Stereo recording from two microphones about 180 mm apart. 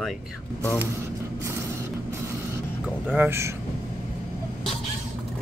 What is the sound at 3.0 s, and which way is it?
Speech, 10° right (ahead or behind).